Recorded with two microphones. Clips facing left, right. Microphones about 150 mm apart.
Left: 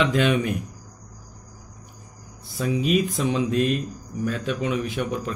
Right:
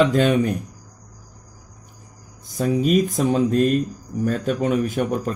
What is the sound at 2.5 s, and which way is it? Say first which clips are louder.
Speech: right 4 dB; 45° right (ahead or behind).